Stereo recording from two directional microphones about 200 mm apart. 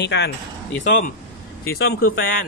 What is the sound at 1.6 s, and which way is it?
Speech, 50° left (ahead or behind).